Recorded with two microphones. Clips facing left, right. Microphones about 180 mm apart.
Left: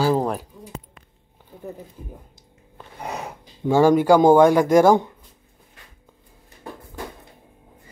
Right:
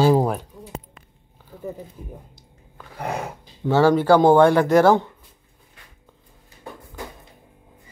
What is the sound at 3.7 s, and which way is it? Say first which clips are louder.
Speech: left 1 dB; 15° left (ahead or behind).